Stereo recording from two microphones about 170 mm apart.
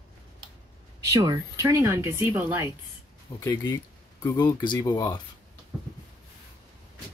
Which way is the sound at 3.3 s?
20° left (ahead or behind).